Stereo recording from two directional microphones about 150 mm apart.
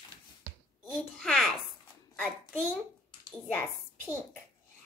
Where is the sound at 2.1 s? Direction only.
5° left (ahead or behind).